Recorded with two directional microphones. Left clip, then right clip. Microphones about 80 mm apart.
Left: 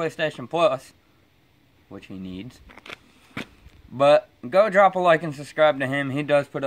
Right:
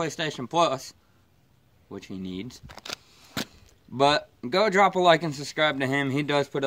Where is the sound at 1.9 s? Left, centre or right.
Left.